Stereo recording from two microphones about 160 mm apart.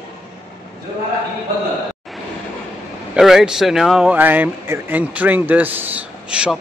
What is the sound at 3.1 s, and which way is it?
Speech, 5° right (ahead or behind).